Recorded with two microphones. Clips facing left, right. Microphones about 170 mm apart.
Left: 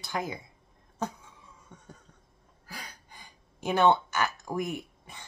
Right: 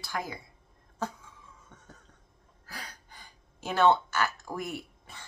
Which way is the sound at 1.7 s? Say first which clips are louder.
Left 3 dB; 15° left (ahead or behind).